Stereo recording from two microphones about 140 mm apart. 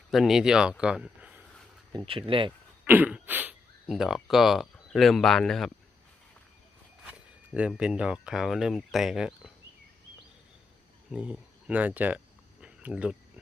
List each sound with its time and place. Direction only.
0.1 s speech: centre (ahead or behind)
1.9 s speech: 35° right (ahead or behind)
2.8 s throat clearing: 10° right (ahead or behind)
3.9 s speech: centre (ahead or behind)
7.1 s speech: 10° right (ahead or behind)
11.1 s a sound: 5° right (ahead or behind)